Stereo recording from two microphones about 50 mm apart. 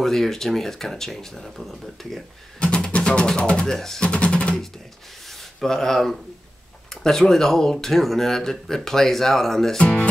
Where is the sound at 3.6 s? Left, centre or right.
Centre.